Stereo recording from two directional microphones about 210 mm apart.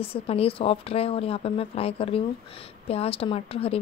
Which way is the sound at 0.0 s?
25° left (ahead or behind).